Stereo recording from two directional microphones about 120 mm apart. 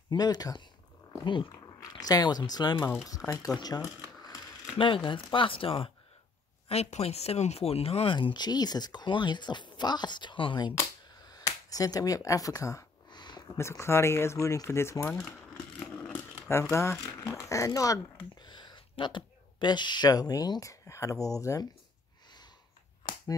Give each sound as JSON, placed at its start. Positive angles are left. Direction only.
{"t": 0.1, "sound": "speech", "side_deg": 35}
{"t": 1.5, "sound": "speech", "side_deg": 30}
{"t": 4.7, "sound": "speech", "side_deg": 45}
{"t": 6.7, "sound": "speech", "side_deg": 60}
{"t": 8.2, "sound": "speech", "side_deg": 40}
{"t": 11.3, "sound": "a sound", "side_deg": 30}
{"t": 13.6, "sound": "speech", "side_deg": 20}
{"t": 15.8, "sound": "vehicle", "side_deg": 10}
{"t": 16.4, "sound": "speech", "side_deg": 20}